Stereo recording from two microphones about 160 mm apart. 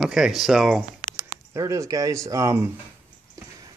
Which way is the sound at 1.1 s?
20° right (ahead or behind).